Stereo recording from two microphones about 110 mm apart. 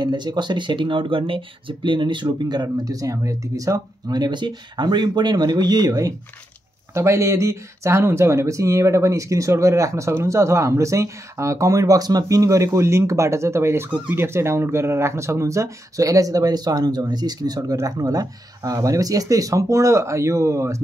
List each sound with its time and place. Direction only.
0.0 s speech: 40° right (ahead or behind); by 13.8 s 25° right (ahead or behind)
13.8 s speech: 15° right (ahead or behind)